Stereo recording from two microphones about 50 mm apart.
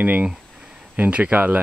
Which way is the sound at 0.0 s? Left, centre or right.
Right.